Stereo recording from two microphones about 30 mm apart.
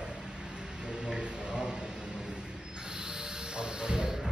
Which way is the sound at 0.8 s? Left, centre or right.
Right.